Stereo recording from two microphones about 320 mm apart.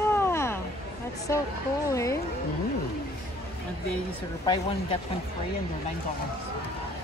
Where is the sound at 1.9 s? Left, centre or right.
Centre.